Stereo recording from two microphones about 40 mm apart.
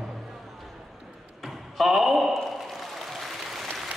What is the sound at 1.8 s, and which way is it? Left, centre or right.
Speech, centre.